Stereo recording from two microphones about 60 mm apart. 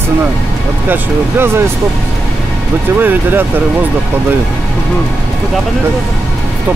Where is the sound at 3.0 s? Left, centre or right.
Right.